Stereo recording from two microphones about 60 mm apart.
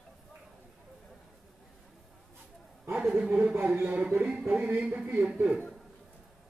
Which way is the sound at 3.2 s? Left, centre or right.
Right.